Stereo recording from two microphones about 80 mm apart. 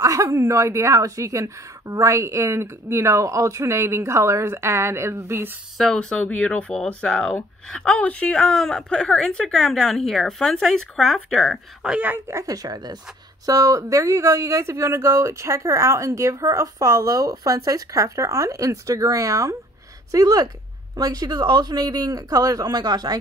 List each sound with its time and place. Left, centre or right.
0.0 s a woman's voice: right
5.8 s speech: centre
11.9 s a woman's voice: right
12.3 s speech: right